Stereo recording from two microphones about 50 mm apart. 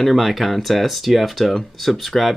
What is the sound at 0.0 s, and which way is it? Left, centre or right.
Speech, centre.